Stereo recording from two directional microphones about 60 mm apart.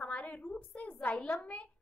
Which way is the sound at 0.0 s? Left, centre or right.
Left.